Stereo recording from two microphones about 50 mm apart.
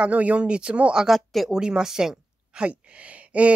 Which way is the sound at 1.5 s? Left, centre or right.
Centre.